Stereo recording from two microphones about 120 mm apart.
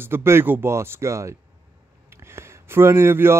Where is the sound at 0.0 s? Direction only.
20° right (ahead or behind).